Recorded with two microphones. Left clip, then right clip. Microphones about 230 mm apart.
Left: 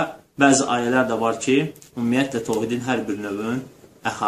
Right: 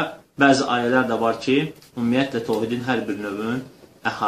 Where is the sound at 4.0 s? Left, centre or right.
Centre.